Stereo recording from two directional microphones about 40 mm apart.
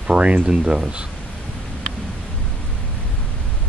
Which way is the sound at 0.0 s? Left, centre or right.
Right.